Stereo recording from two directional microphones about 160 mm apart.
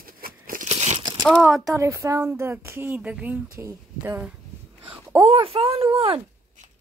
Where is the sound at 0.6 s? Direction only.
40° right (ahead or behind).